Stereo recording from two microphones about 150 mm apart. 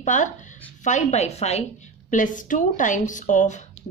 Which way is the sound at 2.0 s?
60° left (ahead or behind).